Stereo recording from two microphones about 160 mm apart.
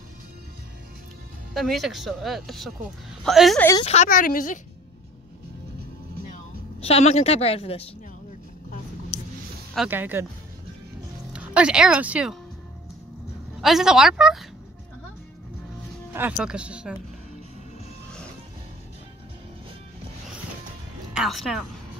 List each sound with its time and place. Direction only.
1.5 s speech: centre (ahead or behind)
3.8 s a woman's voice: 40° left (ahead or behind)
4.1 s a woman's voice: 60° left (ahead or behind)
6.8 s a woman's voice: 40° left (ahead or behind)
9.8 s speech: 10° right (ahead or behind)
11.3 s speech: 5° right (ahead or behind)
13.6 s speech: centre (ahead or behind)
16.1 s speech: 10° right (ahead or behind)
21.1 s speech: centre (ahead or behind)